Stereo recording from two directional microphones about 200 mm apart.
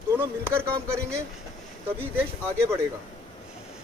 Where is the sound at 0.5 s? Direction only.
15° right (ahead or behind).